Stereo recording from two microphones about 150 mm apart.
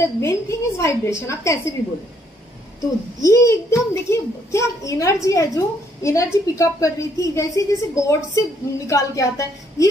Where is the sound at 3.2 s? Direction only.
20° left (ahead or behind).